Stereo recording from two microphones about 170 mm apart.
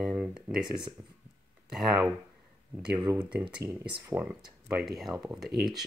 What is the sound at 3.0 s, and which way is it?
Speech, 20° right (ahead or behind).